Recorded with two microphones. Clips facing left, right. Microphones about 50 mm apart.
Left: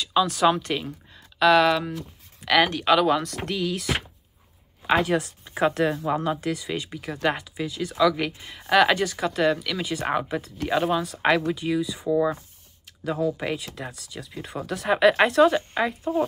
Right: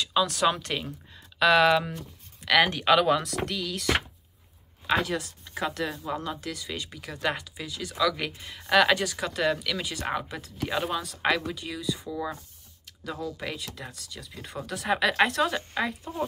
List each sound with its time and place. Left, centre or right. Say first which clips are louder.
0.0 s speech: left 4 dB; centre
3.4 s speech: left 3 dB; centre
5.0 s speech: left 7 dB; left